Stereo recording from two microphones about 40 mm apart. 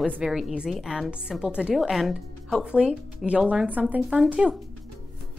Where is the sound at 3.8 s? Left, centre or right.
Right.